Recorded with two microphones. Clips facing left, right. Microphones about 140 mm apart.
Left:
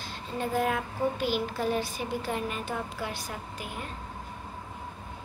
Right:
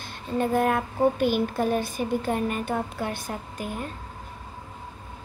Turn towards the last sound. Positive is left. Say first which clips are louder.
# right 5 dB
turn(degrees=-50)  # may be behind; listen again after turning